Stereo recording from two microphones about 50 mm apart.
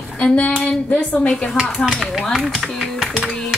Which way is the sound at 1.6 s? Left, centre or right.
Centre.